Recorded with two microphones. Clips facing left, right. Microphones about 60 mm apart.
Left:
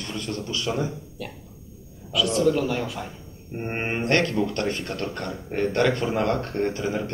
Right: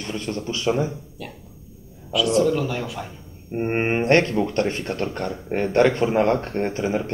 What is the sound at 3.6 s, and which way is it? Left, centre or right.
Speech, right.